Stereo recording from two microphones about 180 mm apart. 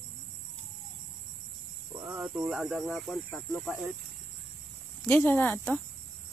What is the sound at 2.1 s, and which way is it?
Speech, 5° right (ahead or behind).